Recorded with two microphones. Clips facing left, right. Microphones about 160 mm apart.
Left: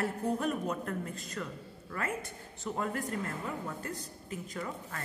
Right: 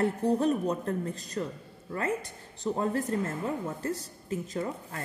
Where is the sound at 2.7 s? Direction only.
30° right (ahead or behind).